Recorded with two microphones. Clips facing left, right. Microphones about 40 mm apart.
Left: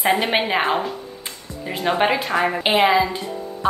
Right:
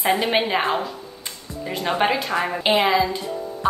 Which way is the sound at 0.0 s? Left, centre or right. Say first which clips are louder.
Left 1 dB; centre.